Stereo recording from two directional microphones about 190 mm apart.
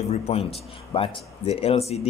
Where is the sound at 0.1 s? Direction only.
30° left (ahead or behind).